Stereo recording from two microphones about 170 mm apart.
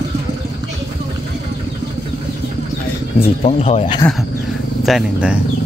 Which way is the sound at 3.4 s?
40° left (ahead or behind).